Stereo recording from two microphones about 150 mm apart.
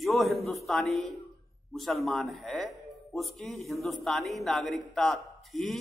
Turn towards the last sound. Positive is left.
turn(degrees=0)  # may be behind; listen again after turning